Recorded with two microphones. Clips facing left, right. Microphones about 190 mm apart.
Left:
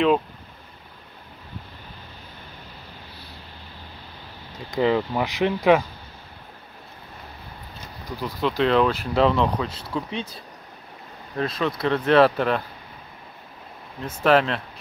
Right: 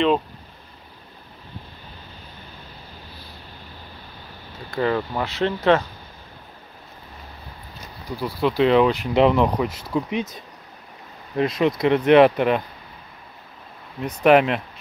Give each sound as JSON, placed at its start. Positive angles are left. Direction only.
{"t": 4.7, "sound": "speech", "side_deg": 15}
{"t": 8.2, "sound": "speech", "side_deg": -10}
{"t": 11.3, "sound": "speech", "side_deg": -20}
{"t": 14.0, "sound": "speech", "side_deg": -15}